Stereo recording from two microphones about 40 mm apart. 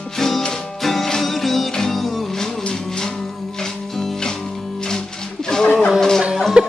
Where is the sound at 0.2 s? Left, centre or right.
Centre.